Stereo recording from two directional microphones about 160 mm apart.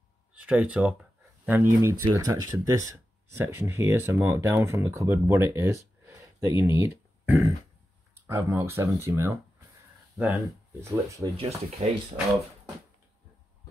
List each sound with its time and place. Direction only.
0.3 s speech: 10° right (ahead or behind)
10.8 s speech: 20° right (ahead or behind)
11.3 s speech: 40° right (ahead or behind)